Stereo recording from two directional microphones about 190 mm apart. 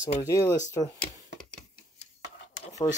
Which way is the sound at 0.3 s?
15° left (ahead or behind).